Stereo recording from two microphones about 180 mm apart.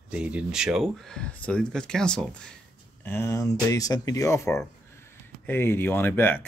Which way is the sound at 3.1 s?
15° left (ahead or behind).